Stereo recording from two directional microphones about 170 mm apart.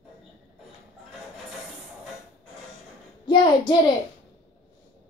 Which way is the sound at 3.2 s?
25° left (ahead or behind).